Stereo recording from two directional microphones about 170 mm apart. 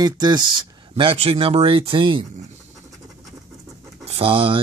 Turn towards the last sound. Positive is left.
turn(degrees=-30)  # may be behind; listen again after turning